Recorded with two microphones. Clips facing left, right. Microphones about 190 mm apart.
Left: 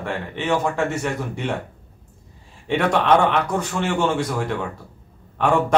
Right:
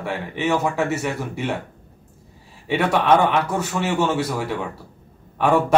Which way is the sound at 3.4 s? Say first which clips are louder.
Even; 5° right (ahead or behind).